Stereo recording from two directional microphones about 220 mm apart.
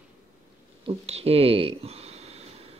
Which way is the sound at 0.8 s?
25° right (ahead or behind).